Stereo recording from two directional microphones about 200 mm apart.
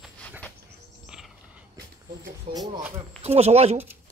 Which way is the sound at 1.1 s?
5° right (ahead or behind).